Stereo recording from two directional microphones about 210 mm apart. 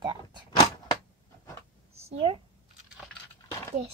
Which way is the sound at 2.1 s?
25° right (ahead or behind).